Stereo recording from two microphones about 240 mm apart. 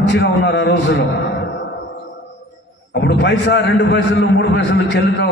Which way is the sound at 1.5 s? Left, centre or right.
Left.